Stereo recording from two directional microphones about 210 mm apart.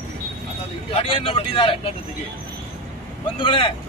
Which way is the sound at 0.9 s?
25° left (ahead or behind).